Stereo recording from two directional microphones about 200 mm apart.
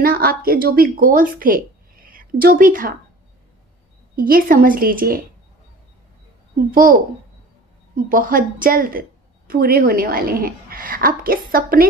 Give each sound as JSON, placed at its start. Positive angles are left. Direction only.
{"t": 0.0, "sound": "a woman's voice", "side_deg": -50}
{"t": 4.1, "sound": "a woman's voice", "side_deg": -45}
{"t": 6.7, "sound": "a woman's voice", "side_deg": -45}